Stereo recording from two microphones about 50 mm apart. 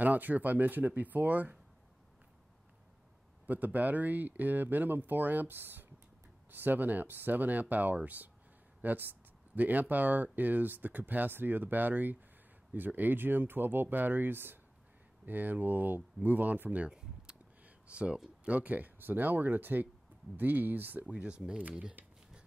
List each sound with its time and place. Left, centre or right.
0.0 s speech: right
3.4 s speech: right
17.6 s a sound: right
18.4 s speech: right
21.2 s speech: right